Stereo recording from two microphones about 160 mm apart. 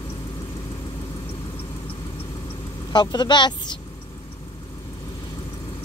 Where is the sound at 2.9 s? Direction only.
25° left (ahead or behind).